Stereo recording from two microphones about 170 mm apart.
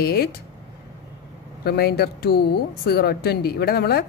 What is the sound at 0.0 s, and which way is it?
Speech, 65° left (ahead or behind).